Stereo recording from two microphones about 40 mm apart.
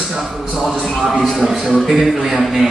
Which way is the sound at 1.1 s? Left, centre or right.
Centre.